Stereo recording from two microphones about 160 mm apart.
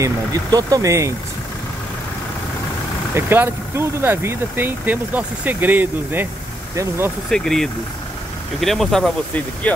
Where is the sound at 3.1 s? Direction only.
15° right (ahead or behind).